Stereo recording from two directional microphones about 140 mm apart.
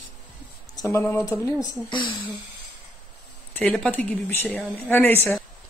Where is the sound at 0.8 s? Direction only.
20° left (ahead or behind).